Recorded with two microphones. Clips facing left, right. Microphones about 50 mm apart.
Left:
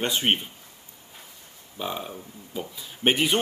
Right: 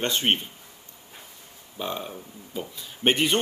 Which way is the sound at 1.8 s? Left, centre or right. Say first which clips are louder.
Even; centre.